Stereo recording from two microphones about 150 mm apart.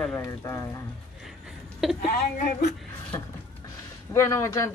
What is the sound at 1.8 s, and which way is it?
Speech, 5° right (ahead or behind).